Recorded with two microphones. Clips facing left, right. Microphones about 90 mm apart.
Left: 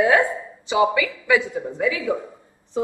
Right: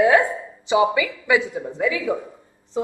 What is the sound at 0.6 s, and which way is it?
A woman's voice, 20° right (ahead or behind).